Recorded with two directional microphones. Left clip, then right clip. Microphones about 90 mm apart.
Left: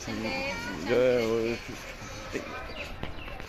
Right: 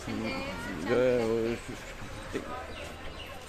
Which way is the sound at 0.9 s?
5° right (ahead or behind).